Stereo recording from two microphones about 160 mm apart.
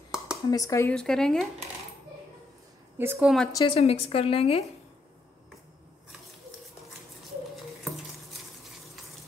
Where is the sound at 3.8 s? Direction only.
40° left (ahead or behind).